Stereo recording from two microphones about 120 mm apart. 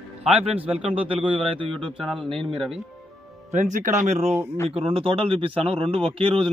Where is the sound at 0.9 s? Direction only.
50° right (ahead or behind).